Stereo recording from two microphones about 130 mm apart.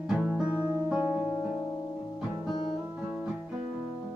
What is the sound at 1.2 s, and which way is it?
Music, 35° left (ahead or behind).